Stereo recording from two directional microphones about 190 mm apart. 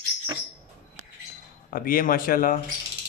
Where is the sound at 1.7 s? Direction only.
50° left (ahead or behind).